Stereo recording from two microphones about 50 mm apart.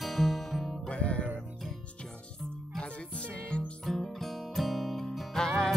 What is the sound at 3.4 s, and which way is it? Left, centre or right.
Music, left.